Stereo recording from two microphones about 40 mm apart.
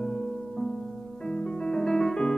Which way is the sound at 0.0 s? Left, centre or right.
Centre.